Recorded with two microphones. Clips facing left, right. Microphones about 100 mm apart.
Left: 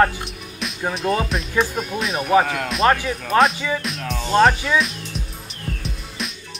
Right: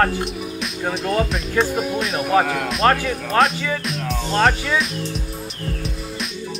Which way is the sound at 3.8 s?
Centre (ahead or behind).